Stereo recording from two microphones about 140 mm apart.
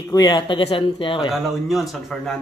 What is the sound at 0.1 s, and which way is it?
Speech, 30° left (ahead or behind).